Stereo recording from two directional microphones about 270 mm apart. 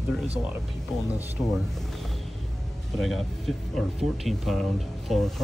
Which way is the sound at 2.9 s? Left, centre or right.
Centre.